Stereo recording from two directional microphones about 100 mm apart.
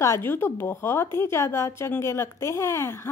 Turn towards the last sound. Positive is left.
turn(degrees=30)  # may be behind; listen again after turning